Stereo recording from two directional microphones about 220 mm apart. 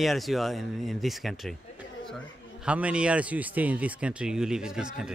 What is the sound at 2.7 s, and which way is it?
Speech, 5° right (ahead or behind).